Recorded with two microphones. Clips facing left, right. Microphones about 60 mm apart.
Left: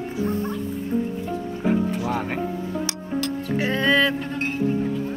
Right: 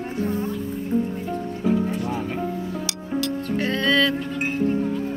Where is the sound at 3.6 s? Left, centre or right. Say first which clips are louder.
Left 1 dB; centre.